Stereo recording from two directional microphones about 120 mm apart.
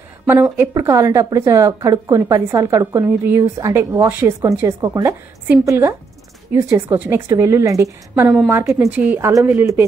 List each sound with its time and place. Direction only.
0.3 s a woman's voice: 20° right (ahead or behind)
8.1 s a woman's voice: 15° right (ahead or behind)